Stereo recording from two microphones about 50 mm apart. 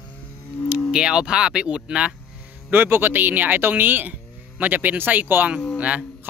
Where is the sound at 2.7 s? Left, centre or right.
Right.